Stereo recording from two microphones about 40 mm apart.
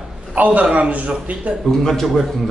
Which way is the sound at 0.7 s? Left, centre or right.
Right.